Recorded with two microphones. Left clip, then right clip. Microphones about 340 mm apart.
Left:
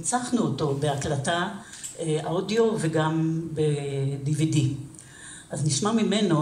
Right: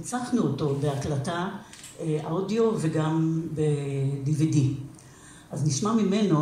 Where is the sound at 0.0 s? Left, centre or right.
Left.